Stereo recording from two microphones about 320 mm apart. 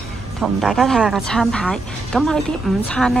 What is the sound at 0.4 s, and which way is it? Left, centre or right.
A woman's voice, centre.